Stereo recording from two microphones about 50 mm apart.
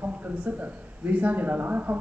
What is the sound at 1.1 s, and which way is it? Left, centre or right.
Speech, right.